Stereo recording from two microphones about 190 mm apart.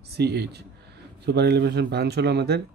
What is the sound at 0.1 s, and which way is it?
A man's voice, 60° right (ahead or behind).